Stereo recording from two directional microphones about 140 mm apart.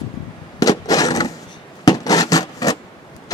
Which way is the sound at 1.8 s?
25° left (ahead or behind).